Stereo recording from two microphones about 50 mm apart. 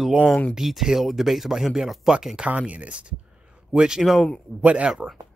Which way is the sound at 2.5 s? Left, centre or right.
Right.